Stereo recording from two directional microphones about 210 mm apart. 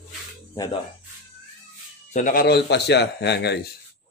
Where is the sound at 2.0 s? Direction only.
35° left (ahead or behind); by 3.5 s 55° left (ahead or behind).